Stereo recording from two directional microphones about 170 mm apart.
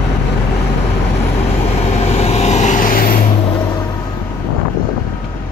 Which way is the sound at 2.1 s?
40° left (ahead or behind).